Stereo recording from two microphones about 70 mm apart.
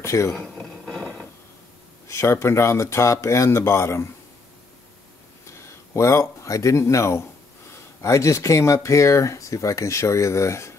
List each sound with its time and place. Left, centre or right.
0.0 s speech: left
0.8 s wood: centre
2.0 s speech: left
5.5 s speech: left